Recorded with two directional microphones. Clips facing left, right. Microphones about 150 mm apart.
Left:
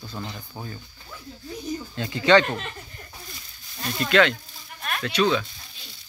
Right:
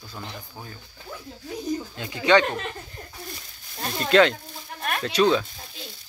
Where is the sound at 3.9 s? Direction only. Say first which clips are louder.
Right 2 dB; 35° right (ahead or behind).